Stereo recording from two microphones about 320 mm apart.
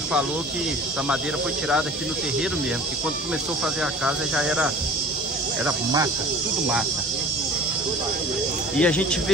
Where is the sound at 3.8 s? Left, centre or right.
Centre.